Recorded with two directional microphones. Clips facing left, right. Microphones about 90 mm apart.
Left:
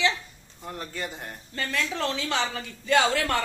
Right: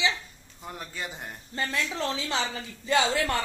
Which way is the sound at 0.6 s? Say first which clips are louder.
Left 3 dB; 5° right (ahead or behind).